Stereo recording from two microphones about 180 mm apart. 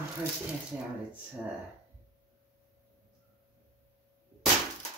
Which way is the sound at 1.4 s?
10° right (ahead or behind).